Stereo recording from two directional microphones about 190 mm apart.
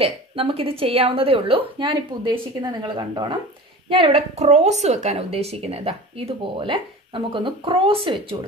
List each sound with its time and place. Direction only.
0.0 s a woman's voice: 30° right (ahead or behind)